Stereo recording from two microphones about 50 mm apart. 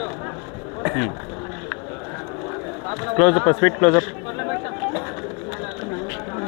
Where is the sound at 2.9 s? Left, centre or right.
Centre.